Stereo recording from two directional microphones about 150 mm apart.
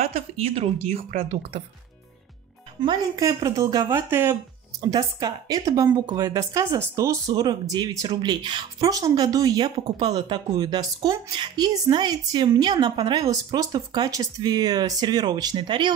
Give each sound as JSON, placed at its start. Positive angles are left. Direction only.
{"t": 0.0, "sound": "a woman's voice", "side_deg": -40}
{"t": 2.8, "sound": "speech", "side_deg": -25}